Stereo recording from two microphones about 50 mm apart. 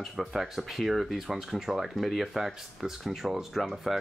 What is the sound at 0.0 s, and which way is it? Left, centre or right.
Speech, centre.